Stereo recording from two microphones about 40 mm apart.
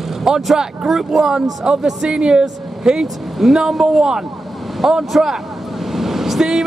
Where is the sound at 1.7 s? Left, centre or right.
Right.